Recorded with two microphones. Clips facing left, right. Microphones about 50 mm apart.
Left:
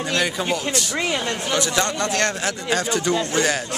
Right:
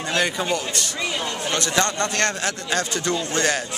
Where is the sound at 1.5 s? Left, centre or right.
Centre.